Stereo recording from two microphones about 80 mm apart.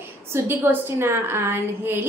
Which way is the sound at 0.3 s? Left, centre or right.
Right.